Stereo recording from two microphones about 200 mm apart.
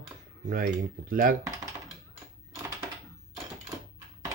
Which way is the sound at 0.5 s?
45° right (ahead or behind).